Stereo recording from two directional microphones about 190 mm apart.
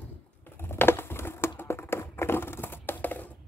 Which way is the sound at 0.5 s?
10° left (ahead or behind).